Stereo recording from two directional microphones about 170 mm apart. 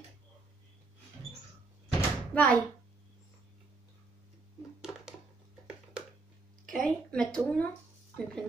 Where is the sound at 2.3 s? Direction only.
10° left (ahead or behind).